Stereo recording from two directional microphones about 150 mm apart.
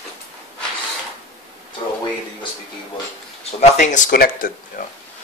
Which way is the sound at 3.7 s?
55° left (ahead or behind).